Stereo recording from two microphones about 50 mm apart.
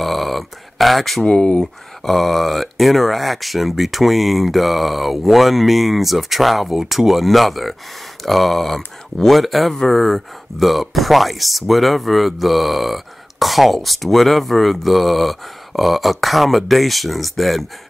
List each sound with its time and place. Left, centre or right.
0.0 s a sound: centre
1.2 s speech: centre
2.0 s speech: centre